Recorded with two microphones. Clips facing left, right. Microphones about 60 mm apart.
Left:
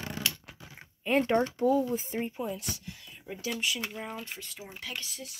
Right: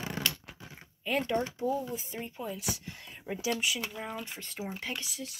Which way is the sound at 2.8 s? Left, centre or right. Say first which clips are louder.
Right 1 dB; right.